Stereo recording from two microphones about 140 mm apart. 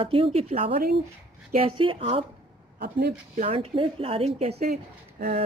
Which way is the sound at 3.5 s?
40° right (ahead or behind).